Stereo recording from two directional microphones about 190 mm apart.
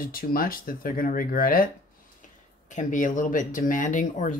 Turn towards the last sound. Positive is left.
turn(degrees=45)  # may be behind; listen again after turning